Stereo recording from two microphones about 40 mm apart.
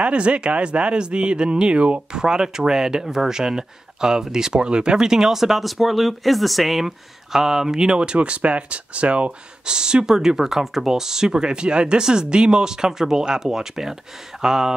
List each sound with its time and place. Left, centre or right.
0.0 s speech: right
9.7 s speech: right